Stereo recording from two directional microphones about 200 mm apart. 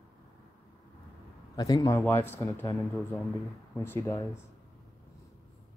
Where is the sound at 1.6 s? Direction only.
20° left (ahead or behind).